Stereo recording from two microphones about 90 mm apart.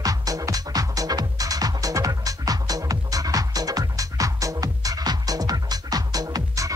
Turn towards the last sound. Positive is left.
turn(degrees=-40)  # may be behind; listen again after turning